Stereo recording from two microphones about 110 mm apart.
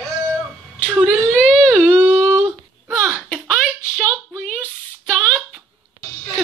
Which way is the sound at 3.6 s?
15° left (ahead or behind).